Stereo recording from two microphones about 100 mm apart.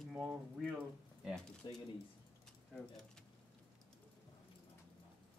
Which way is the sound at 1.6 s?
45° left (ahead or behind).